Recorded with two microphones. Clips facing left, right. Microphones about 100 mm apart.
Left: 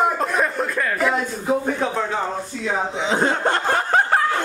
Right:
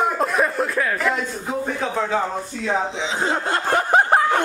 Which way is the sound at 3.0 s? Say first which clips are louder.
Left 3 dB; 50° left (ahead or behind).